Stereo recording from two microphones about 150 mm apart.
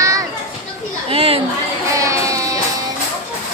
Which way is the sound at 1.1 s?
40° right (ahead or behind).